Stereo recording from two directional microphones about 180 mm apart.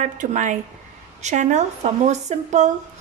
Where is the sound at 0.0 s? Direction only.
45° right (ahead or behind).